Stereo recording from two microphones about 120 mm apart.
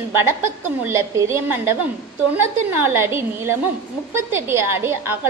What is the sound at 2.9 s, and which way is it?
A woman's voice, 20° right (ahead or behind).